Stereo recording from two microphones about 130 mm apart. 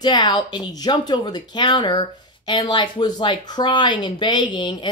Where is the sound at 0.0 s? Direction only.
35° left (ahead or behind).